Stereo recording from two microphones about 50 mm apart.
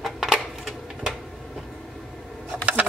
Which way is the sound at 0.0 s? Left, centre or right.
Centre.